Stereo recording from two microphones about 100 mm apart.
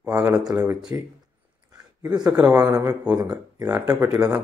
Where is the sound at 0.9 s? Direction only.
25° right (ahead or behind).